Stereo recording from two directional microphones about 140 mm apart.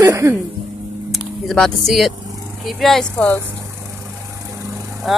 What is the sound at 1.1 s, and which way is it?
Speech, centre (ahead or behind).